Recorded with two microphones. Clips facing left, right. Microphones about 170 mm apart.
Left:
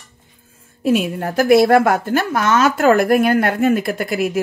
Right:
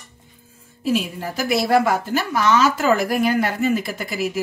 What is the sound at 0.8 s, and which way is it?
Speech, 55° left (ahead or behind).